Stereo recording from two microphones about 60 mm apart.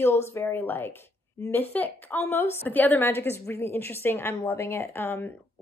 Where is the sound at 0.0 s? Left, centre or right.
Left.